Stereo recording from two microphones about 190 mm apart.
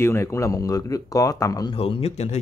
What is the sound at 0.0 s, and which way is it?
Speech, 15° left (ahead or behind).